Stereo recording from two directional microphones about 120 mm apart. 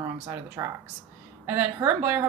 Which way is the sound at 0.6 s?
30° right (ahead or behind).